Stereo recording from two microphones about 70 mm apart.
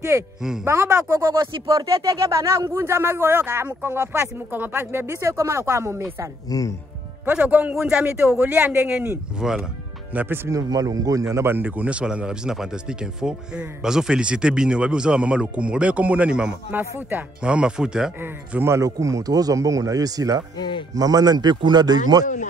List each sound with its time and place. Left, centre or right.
0.7 s speech: right
6.5 s speech: left
7.3 s speech: centre
8.2 s speech: right
9.4 s speech: centre
10.1 s speech: right
10.5 s speech: right
11.4 s speech: right
16.7 s speech: right
17.4 s speech: centre
18.6 s speech: right
18.9 s speech: right